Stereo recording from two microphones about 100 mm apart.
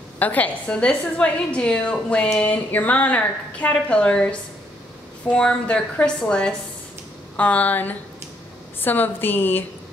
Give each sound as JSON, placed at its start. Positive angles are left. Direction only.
{"t": 0.2, "sound": "a woman's voice", "side_deg": 15}